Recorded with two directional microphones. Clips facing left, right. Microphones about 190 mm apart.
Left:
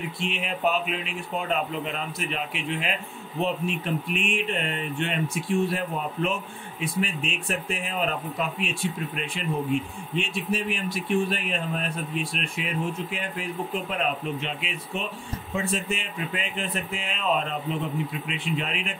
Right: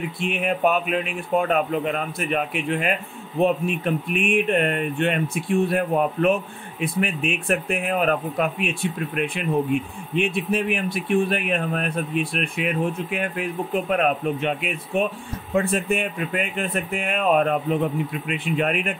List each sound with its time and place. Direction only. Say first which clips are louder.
0.2 s speech: right 6 dB; 55° right (ahead or behind)